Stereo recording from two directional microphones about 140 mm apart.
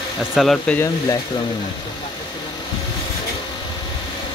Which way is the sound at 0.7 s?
20° left (ahead or behind).